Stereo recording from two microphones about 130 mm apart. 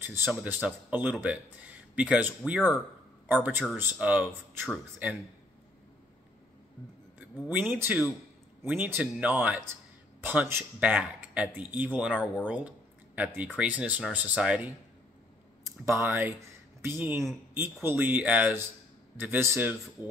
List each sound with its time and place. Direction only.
0.0 s a man's voice: 15° right (ahead or behind)
7.4 s speech: 15° right (ahead or behind)
15.6 s speech: 20° right (ahead or behind)